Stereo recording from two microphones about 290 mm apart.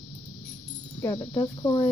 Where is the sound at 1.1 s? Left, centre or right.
Centre.